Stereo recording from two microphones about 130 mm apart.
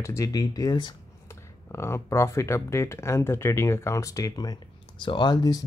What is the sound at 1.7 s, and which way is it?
Speech, 20° left (ahead or behind).